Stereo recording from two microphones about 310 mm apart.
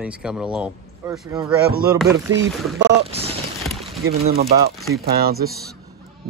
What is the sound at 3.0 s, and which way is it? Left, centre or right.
Speech, centre.